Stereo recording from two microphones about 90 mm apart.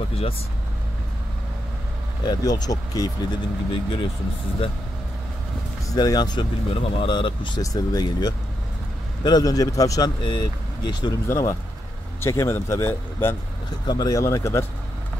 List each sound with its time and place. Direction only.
2.2 s speech: 50° left (ahead or behind)
5.9 s speech: 45° left (ahead or behind)
6.7 s speech: 85° left; by 7.6 s 65° left (ahead or behind)
7.6 s speech: 45° left (ahead or behind)
10.2 s speech: 55° left (ahead or behind)
11.2 s speech: 35° left (ahead or behind)
13.8 s speech: 50° left (ahead or behind)
14.2 s speech: 30° left (ahead or behind)